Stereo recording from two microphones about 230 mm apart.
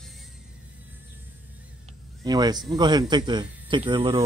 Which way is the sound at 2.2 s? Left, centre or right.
Centre.